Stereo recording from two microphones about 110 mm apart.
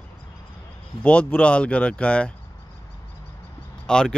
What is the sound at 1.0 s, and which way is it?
Speech, 10° left (ahead or behind).